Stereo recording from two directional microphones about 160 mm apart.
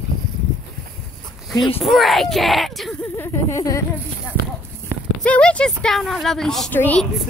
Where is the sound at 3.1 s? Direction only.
15° left (ahead or behind).